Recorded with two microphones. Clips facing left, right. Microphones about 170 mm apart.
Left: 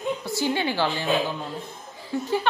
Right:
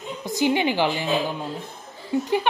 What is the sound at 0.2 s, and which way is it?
Speech, 15° right (ahead or behind).